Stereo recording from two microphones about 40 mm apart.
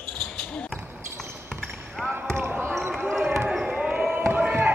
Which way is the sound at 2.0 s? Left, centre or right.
Centre.